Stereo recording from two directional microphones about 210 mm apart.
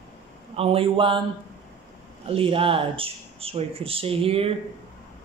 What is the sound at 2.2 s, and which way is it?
Speech, 25° right (ahead or behind).